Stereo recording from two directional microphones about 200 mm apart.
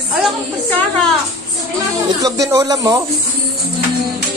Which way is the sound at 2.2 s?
15° right (ahead or behind).